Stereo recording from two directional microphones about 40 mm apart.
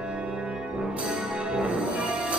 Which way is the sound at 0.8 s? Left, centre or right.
Right.